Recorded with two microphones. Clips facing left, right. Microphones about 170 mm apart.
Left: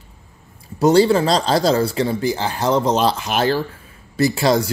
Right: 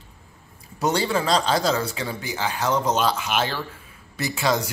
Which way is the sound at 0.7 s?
30° left (ahead or behind).